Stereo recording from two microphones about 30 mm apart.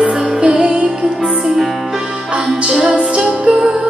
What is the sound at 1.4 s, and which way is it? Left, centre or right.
Music, centre.